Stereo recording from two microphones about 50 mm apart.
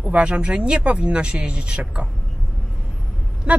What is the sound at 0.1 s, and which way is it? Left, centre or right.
Speech, right.